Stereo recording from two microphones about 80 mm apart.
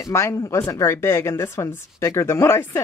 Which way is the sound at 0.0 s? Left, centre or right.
Left.